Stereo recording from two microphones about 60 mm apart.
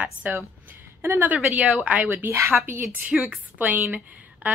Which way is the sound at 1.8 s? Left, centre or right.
Right.